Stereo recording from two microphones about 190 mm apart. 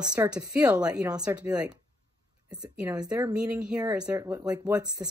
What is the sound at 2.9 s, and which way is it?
Speech, 20° right (ahead or behind).